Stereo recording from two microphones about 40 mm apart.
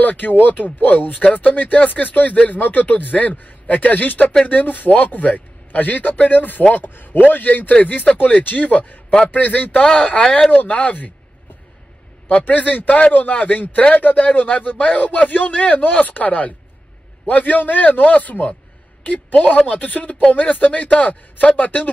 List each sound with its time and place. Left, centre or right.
0.0 s a man's voice: left
9.8 s speech: left
10.5 s a man's voice: left
12.3 s a man's voice: left